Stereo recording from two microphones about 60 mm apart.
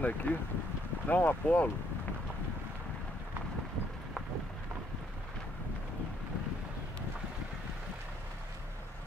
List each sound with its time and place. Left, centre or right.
0.0 s speech: left